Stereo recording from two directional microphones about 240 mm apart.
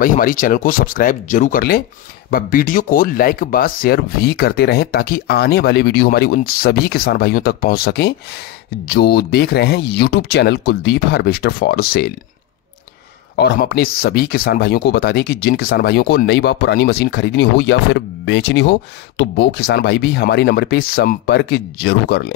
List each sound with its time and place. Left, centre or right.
0.0 s speech: left
13.4 s speech: left